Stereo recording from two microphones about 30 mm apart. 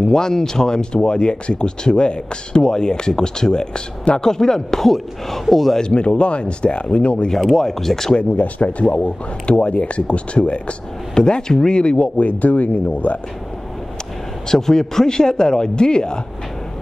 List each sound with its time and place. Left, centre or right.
0.1 s speech: centre
4.8 s speech: centre
5.8 s speech: left
7.3 s speech: centre
8.4 s speech: left
11.1 s speech: left
12.2 s speech: left
14.5 s speech: centre